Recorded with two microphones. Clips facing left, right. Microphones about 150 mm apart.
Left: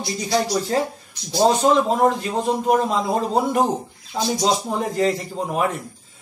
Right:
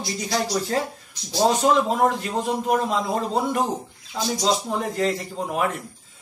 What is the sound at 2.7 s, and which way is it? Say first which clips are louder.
Speech: left 3 dB; 5° left (ahead or behind).